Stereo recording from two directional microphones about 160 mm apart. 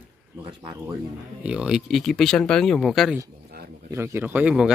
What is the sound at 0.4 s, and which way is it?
Speech, 30° right (ahead or behind).